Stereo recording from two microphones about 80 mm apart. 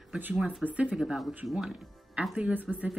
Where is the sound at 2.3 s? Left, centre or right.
Centre.